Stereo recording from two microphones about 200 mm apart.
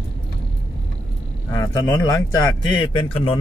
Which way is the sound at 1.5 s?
15° left (ahead or behind).